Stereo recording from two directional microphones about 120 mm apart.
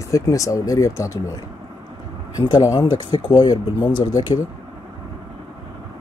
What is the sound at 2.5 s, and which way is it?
Speech, 35° left (ahead or behind).